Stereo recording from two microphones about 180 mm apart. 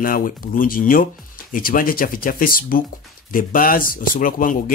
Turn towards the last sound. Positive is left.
turn(degrees=50)  # may be behind; listen again after turning